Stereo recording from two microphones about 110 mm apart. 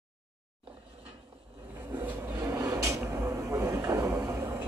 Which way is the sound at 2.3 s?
30° right (ahead or behind).